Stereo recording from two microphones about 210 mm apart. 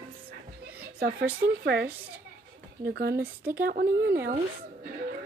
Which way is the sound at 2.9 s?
50° right (ahead or behind).